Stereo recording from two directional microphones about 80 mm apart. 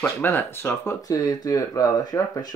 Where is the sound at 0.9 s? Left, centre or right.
Left.